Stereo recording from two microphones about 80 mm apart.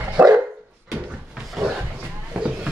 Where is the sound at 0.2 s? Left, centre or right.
Centre.